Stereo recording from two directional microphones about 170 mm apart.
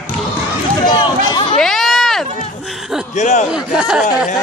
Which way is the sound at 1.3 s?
30° left (ahead or behind).